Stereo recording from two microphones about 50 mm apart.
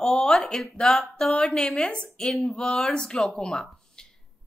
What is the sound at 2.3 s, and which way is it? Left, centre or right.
A woman's voice, centre.